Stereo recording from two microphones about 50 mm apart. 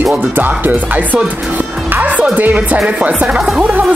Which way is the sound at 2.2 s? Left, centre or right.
Right.